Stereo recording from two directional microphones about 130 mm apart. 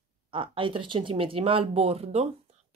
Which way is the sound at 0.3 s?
40° right (ahead or behind).